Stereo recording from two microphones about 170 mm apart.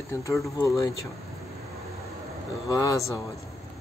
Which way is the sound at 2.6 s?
20° left (ahead or behind).